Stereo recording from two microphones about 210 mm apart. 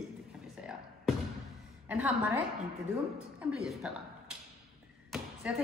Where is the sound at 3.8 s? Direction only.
5° right (ahead or behind).